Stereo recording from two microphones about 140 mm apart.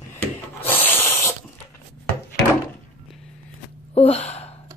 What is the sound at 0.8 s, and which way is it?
Snake, 15° left (ahead or behind).